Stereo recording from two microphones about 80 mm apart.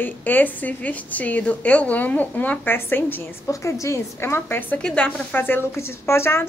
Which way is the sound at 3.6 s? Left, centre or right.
Left.